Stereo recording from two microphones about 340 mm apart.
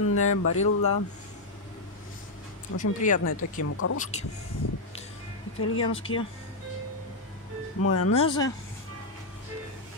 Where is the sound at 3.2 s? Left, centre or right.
Left.